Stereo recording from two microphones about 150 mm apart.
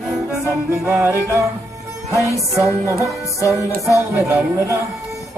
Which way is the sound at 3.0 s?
20° left (ahead or behind).